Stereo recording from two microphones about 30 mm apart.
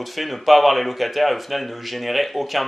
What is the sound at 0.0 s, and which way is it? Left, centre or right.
Speech, centre.